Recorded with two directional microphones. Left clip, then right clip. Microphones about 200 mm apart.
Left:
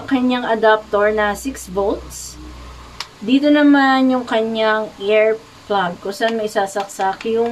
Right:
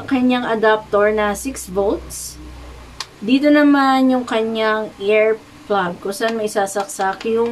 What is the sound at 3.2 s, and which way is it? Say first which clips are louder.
A woman's voice: even; 15° right (ahead or behind).